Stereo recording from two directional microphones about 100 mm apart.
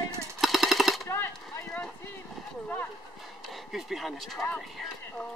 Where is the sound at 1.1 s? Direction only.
25° left (ahead or behind).